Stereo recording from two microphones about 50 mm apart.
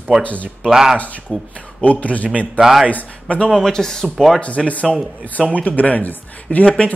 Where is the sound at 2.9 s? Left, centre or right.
Left.